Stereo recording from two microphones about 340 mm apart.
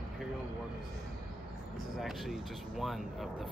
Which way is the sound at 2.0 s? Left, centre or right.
Centre.